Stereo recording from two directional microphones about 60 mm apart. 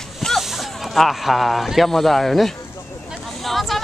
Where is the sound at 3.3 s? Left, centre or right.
Centre.